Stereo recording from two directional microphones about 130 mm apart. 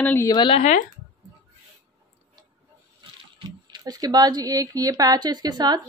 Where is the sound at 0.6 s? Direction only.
65° left (ahead or behind).